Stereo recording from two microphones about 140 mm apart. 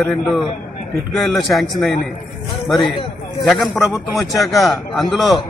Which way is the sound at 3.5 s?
Centre (ahead or behind).